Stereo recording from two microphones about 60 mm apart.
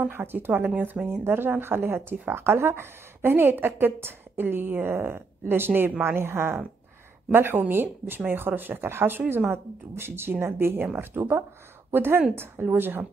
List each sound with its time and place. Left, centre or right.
0.2 s speech: right
5.7 s a woman's voice: right
5.9 s speech: right